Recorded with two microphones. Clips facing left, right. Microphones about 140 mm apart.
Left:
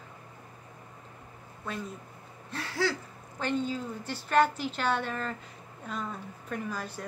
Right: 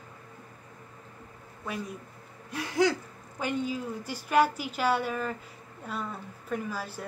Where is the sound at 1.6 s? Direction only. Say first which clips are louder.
Right 1 dB; 10° right (ahead or behind).